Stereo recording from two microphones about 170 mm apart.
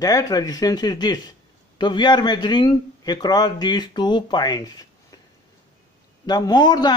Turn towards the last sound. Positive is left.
turn(degrees=25)  # may be behind; listen again after turning